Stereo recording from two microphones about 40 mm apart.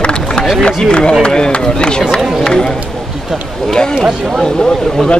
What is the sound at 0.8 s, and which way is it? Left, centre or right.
A man's voice, left.